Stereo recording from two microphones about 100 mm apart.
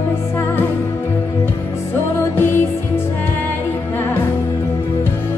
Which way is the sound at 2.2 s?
25° left (ahead or behind).